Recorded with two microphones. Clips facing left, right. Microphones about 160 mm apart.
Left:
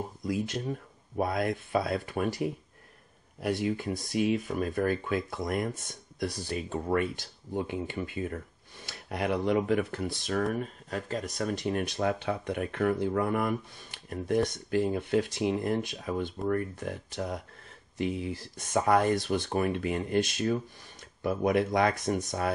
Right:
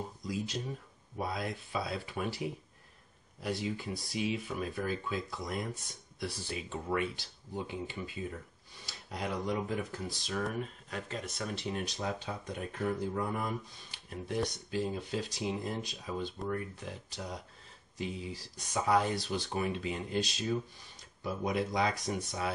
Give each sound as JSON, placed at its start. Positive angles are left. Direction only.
{"t": 0.2, "sound": "speech", "side_deg": 55}
{"t": 6.1, "sound": "speech", "side_deg": 45}